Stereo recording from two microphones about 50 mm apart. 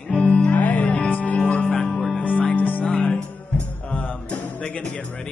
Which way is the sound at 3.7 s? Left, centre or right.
Left.